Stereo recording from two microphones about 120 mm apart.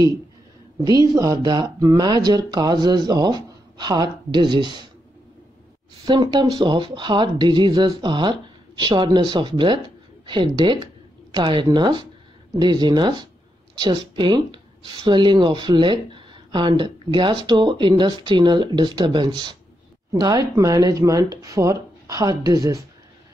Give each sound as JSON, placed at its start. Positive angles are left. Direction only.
{"t": 0.8, "sound": "speech", "side_deg": -35}
{"t": 6.0, "sound": "speech", "side_deg": -40}